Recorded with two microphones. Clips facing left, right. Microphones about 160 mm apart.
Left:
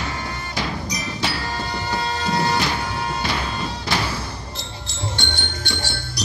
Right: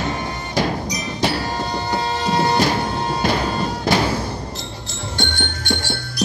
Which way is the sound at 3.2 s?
45° right (ahead or behind).